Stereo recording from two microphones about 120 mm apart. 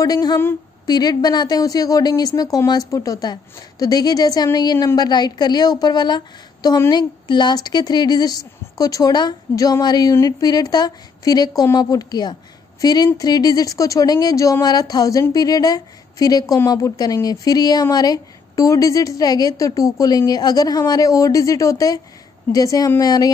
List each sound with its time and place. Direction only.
0.0 s speech: 35° left (ahead or behind)